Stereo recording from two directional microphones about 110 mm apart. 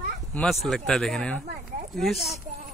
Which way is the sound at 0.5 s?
Centre (ahead or behind).